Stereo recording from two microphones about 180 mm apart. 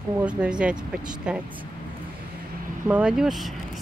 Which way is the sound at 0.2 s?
5° right (ahead or behind).